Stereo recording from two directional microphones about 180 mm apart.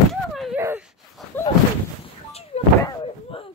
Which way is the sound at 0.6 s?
15° right (ahead or behind).